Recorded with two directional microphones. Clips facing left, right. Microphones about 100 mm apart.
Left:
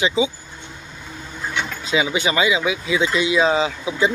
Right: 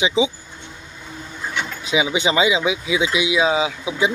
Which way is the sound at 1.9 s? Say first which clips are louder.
Right 1 dB; 15° right (ahead or behind).